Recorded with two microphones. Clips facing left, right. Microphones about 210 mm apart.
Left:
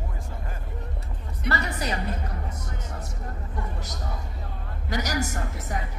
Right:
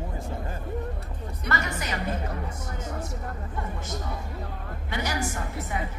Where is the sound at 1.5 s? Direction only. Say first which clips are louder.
Left 2 dB; 35° left (ahead or behind).